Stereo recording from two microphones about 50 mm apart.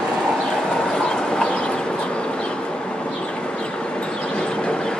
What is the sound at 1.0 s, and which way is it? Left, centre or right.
Train, centre.